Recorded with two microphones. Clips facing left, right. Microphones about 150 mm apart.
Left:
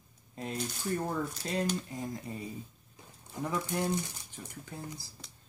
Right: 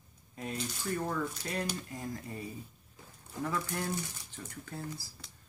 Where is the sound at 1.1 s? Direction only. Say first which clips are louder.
Left 1 dB; 25° left (ahead or behind).